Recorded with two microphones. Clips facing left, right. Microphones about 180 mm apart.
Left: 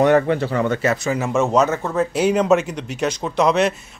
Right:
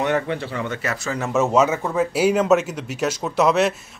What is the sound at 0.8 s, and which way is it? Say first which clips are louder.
Speech: left 6 dB; 20° left (ahead or behind).